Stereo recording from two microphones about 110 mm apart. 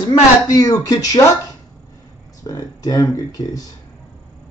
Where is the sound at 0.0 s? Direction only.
35° left (ahead or behind).